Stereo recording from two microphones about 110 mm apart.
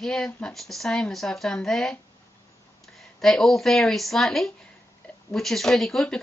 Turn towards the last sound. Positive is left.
turn(degrees=5)  # may be behind; listen again after turning